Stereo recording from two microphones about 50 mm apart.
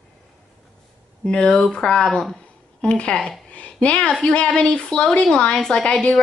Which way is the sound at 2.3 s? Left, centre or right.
Centre.